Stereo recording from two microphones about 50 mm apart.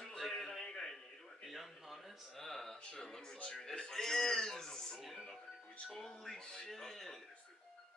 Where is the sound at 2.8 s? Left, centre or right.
Centre.